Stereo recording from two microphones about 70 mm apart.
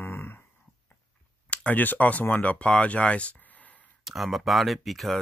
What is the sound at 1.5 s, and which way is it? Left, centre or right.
Speech, left.